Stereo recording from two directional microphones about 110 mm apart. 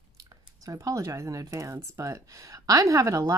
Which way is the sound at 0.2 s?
35° right (ahead or behind).